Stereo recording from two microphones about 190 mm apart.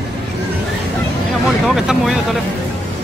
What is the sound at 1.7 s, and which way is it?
Speech, centre (ahead or behind).